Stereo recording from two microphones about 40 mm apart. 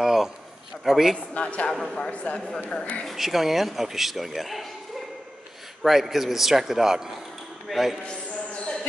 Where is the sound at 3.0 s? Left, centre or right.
Centre.